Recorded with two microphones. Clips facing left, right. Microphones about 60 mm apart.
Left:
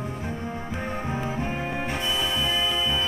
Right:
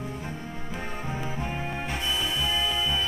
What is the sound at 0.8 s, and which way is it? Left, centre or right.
Music, centre.